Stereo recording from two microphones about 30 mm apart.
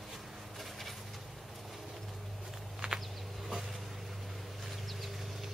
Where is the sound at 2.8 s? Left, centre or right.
Right.